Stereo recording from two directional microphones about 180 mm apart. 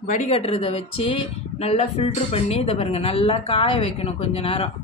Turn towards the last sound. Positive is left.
turn(degrees=35)  # may be behind; listen again after turning